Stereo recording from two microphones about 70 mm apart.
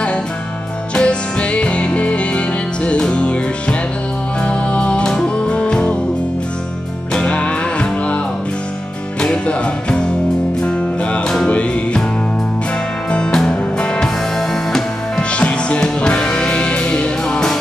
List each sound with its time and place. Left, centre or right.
0.9 s music: centre
7.2 s music: centre
9.2 s music: centre
11.2 s music: centre
13.1 s music: centre